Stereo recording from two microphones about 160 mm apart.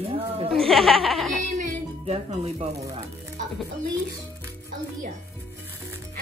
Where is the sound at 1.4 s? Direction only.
45° right (ahead or behind).